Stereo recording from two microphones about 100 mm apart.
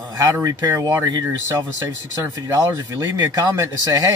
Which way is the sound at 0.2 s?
35° right (ahead or behind).